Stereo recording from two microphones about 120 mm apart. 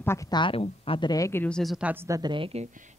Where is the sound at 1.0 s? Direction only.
30° left (ahead or behind).